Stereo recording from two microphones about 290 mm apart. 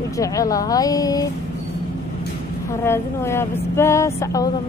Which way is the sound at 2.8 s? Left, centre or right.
Centre.